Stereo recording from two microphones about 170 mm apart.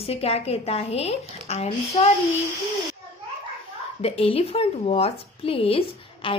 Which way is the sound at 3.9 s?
35° left (ahead or behind).